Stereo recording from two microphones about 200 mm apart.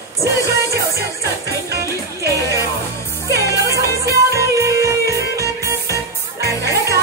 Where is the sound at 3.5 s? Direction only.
15° right (ahead or behind).